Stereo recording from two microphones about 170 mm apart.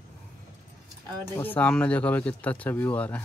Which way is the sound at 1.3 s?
10° left (ahead or behind).